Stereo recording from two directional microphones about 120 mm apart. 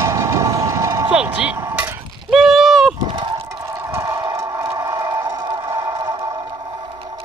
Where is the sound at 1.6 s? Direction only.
15° right (ahead or behind).